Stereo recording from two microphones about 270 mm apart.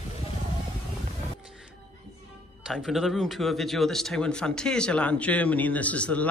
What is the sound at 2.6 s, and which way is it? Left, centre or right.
Speech, centre.